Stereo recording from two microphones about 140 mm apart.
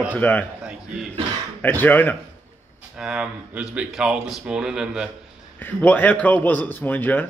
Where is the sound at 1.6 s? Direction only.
10° left (ahead or behind).